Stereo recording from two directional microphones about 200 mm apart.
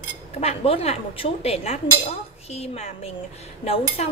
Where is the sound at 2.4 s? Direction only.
30° left (ahead or behind).